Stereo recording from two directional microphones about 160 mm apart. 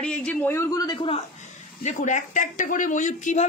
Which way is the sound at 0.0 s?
5° left (ahead or behind).